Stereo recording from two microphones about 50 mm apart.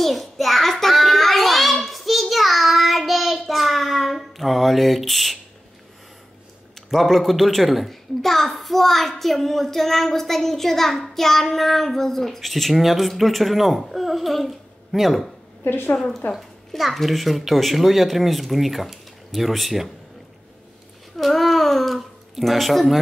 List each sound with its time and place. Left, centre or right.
0.0 s child singing: centre
6.9 s a child's voice: centre
15.6 s a woman's voice: left
16.3 s a child's voice: centre
21.2 s speech: centre